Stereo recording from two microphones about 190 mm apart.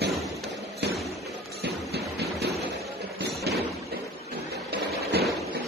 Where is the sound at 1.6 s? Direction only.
60° right (ahead or behind).